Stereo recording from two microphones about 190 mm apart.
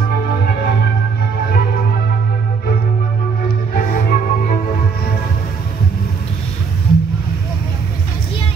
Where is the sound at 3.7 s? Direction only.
45° left (ahead or behind).